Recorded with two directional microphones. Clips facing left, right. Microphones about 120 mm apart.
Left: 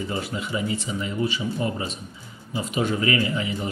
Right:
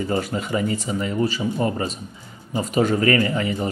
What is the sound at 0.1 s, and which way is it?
A man's voice, 45° right (ahead or behind).